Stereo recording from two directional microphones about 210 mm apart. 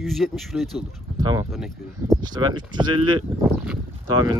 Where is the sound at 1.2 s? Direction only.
20° right (ahead or behind).